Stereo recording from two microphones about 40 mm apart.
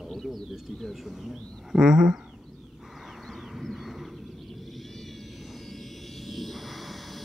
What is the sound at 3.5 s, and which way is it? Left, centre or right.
Vehicle, centre.